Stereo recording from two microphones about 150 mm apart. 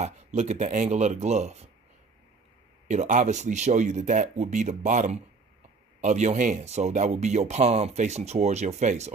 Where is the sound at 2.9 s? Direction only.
55° right (ahead or behind).